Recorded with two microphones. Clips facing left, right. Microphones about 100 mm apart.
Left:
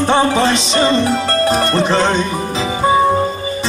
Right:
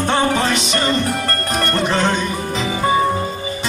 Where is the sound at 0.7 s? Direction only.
30° left (ahead or behind).